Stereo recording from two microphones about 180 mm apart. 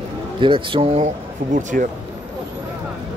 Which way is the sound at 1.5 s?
45° right (ahead or behind).